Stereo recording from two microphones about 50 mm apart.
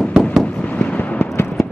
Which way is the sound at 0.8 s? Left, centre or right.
Left.